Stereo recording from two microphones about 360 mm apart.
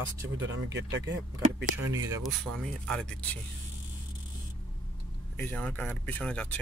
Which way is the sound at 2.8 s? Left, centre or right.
Centre.